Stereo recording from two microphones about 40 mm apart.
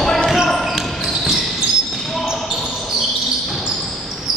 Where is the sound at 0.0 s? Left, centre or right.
Centre.